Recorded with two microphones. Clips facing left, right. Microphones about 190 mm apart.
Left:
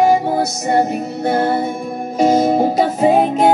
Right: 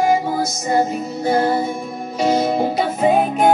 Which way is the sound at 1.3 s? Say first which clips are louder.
Even; 60° left (ahead or behind).